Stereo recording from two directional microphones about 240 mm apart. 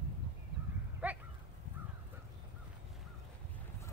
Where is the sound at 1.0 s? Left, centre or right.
Centre.